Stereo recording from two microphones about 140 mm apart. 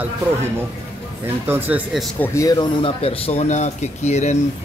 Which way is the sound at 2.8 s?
40° left (ahead or behind).